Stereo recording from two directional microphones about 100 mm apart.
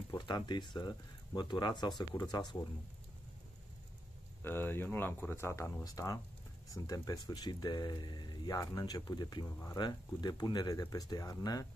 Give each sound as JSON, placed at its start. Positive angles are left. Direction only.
{"t": 0.3, "sound": "speech", "side_deg": 50}
{"t": 4.4, "sound": "speech", "side_deg": 20}